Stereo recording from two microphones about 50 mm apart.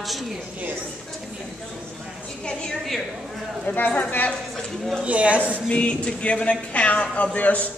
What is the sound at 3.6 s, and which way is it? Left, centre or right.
Speech, left.